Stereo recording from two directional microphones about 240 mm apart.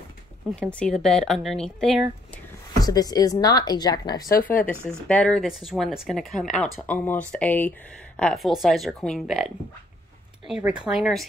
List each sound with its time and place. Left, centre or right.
0.5 s speech: centre
2.8 s a woman's voice: centre